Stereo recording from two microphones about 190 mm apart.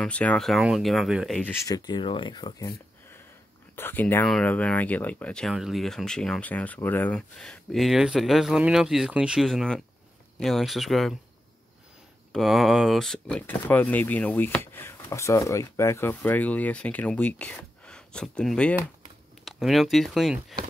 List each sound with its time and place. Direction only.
0.0 s speech: 5° left (ahead or behind)
1.5 s speech: 15° left (ahead or behind)
3.7 s speech: 10° left (ahead or behind)
12.3 s speech: centre (ahead or behind)